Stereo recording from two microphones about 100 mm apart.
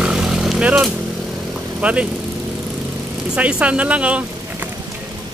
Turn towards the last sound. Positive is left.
turn(degrees=-15)  # may be behind; listen again after turning